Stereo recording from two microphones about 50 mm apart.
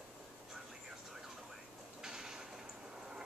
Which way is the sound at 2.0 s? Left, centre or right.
Centre.